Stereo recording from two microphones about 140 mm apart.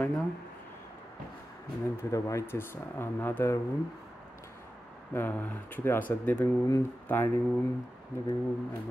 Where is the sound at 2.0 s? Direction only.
20° left (ahead or behind).